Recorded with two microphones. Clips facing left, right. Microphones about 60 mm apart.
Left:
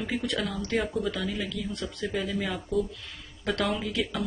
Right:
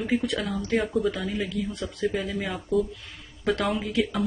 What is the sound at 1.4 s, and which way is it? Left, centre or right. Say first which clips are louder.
Speech: right 3 dB; centre.